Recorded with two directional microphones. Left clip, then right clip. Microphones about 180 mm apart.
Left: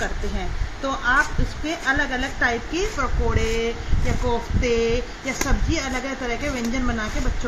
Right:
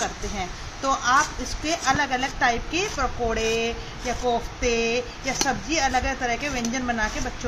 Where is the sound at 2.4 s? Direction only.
Centre (ahead or behind).